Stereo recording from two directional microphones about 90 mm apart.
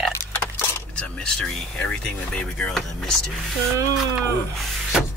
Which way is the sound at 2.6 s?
5° left (ahead or behind).